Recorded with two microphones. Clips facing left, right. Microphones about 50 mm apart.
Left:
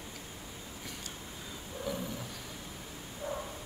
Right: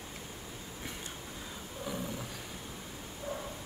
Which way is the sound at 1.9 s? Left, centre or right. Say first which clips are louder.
Left 2 dB; centre.